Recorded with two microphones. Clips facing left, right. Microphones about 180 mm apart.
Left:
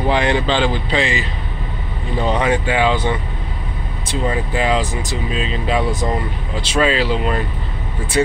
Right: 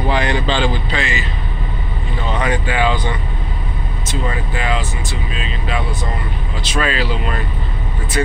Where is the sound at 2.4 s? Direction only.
25° left (ahead or behind).